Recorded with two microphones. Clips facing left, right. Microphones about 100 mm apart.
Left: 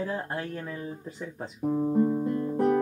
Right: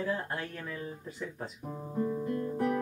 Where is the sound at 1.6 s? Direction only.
45° left (ahead or behind).